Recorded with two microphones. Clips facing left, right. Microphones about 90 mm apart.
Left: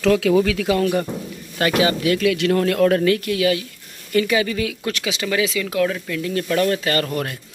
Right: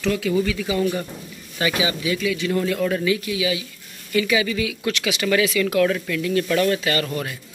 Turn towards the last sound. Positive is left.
turn(degrees=40)  # may be behind; listen again after turning